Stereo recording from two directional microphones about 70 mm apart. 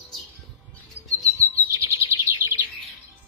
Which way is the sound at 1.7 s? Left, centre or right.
Right.